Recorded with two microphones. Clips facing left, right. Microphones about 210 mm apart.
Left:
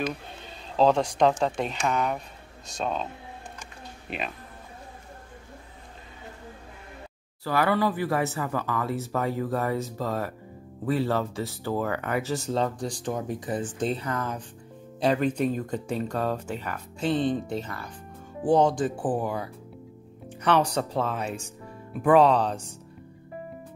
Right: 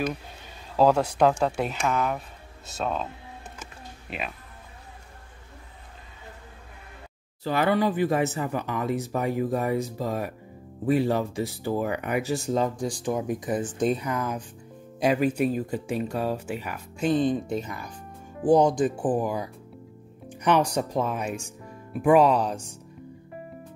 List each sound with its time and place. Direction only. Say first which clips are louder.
0.7 s speech: right 1 dB; 10° right (ahead or behind)
4.1 s speech: left 1 dB; centre (ahead or behind)
7.4 s speech: right 1 dB; 20° right (ahead or behind)